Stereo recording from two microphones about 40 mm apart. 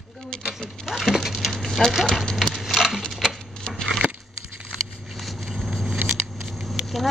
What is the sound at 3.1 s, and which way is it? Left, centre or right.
Typewriter, centre.